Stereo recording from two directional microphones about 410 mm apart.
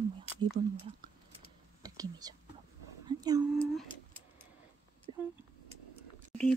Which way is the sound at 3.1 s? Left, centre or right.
Centre.